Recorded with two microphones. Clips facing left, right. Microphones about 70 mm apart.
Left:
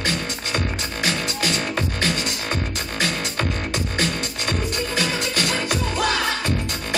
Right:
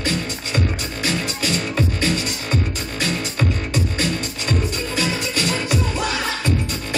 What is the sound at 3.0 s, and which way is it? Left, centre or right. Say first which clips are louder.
Music: right 1 dB; left.